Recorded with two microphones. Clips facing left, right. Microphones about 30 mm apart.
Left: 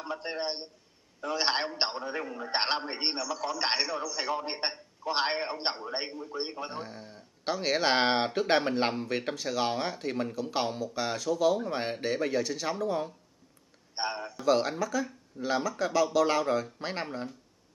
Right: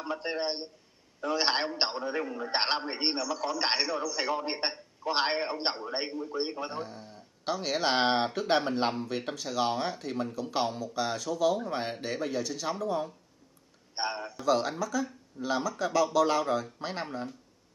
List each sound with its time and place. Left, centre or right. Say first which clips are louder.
0.0 s a man's voice: right 2 dB; centre
6.8 s speech: right 1 dB; centre
13.9 s a man's voice: even; centre
14.4 s speech: left 1 dB; centre